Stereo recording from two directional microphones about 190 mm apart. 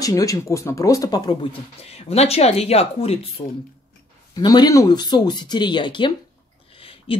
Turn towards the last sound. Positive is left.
turn(degrees=30)  # may be behind; listen again after turning